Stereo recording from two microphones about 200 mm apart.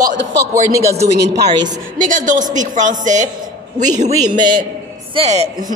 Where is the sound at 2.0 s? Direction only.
40° right (ahead or behind).